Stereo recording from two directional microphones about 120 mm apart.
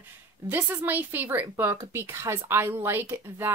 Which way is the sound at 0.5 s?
15° right (ahead or behind).